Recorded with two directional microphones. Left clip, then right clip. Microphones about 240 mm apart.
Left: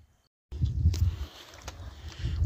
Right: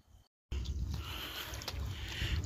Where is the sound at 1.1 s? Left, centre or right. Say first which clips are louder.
Right 5 dB; centre.